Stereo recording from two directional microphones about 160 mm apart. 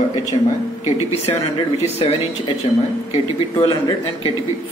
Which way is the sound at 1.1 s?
40° left (ahead or behind).